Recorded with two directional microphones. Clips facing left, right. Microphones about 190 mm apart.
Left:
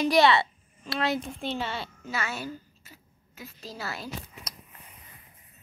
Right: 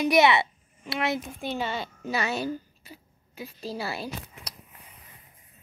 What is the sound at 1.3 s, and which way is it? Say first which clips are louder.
Speech: right 1 dB; centre (ahead or behind).